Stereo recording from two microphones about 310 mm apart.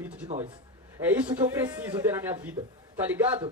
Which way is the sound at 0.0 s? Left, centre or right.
Centre.